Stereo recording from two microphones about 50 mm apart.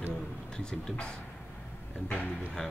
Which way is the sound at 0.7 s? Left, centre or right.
Centre.